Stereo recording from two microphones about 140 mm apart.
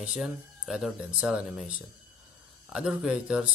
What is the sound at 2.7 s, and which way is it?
Speech, 5° right (ahead or behind).